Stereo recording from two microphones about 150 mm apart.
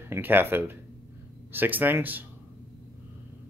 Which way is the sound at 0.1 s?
15° right (ahead or behind).